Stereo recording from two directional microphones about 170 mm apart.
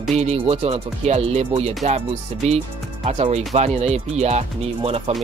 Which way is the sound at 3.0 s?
40° right (ahead or behind).